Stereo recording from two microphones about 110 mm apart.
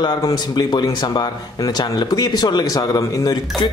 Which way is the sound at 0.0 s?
40° left (ahead or behind).